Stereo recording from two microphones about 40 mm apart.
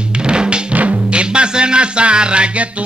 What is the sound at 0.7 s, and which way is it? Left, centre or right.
Music, right.